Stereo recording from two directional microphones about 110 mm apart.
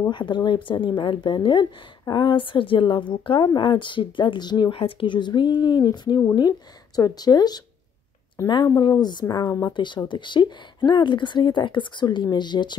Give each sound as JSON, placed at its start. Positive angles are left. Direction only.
{"t": 0.1, "sound": "a woman's voice", "side_deg": 45}
{"t": 8.4, "sound": "speech", "side_deg": 25}
{"t": 8.8, "sound": "speech", "side_deg": 40}
{"t": 9.8, "sound": "a woman's voice", "side_deg": 45}